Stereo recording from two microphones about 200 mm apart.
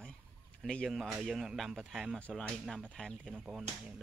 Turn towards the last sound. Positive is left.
turn(degrees=-5)  # may be behind; listen again after turning